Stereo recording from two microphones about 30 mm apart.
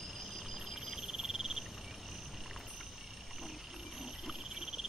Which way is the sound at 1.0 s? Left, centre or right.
Centre.